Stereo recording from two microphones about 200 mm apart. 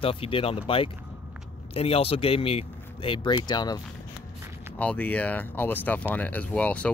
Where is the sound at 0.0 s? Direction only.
25° left (ahead or behind).